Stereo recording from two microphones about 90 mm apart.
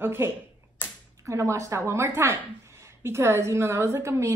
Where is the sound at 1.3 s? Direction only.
35° right (ahead or behind).